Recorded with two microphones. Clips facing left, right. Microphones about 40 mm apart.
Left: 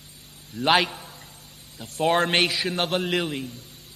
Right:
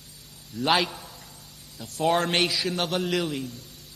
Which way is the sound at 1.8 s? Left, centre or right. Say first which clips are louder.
Left 2 dB; left.